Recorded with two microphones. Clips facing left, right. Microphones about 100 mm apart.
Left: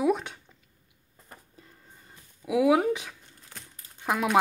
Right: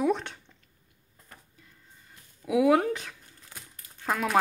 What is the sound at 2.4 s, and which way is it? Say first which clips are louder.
Speech: even; 5° left (ahead or behind).